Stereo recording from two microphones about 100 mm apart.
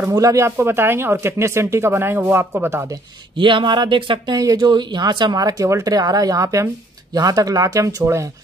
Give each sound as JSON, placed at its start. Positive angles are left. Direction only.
{"t": 0.1, "sound": "speech", "side_deg": -35}
{"t": 3.3, "sound": "speech", "side_deg": -55}